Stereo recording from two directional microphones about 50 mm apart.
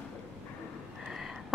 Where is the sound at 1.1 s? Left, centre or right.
Centre.